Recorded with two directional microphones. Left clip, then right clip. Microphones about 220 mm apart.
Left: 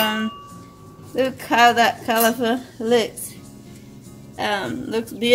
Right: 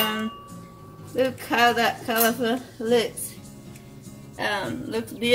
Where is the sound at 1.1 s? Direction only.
45° left (ahead or behind).